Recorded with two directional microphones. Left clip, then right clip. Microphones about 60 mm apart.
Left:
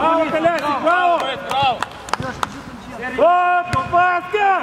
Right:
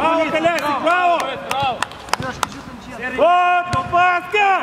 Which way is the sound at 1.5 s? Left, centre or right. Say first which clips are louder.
Left 3 dB; left.